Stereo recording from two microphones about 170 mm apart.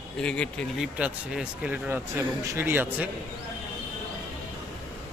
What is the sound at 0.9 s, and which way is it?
Speech, 10° right (ahead or behind).